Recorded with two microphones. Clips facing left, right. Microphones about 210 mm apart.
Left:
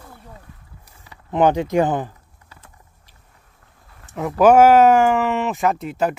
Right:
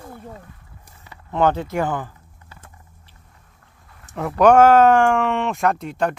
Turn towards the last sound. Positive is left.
turn(degrees=5)  # may be behind; listen again after turning